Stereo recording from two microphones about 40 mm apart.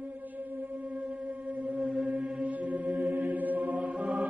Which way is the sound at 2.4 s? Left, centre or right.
Right.